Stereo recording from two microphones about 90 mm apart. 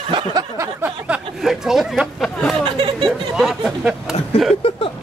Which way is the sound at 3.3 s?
Centre (ahead or behind).